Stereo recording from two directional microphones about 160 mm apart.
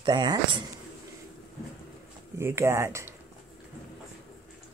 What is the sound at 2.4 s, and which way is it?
Speech, 15° right (ahead or behind).